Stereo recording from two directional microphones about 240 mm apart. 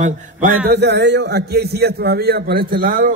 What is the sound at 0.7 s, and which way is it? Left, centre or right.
A man's voice, right.